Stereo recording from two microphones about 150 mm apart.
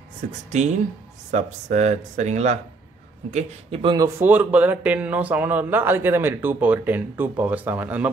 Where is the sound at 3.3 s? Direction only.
40° right (ahead or behind).